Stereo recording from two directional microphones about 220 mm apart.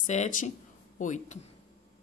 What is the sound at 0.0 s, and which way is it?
Speech, 35° left (ahead or behind).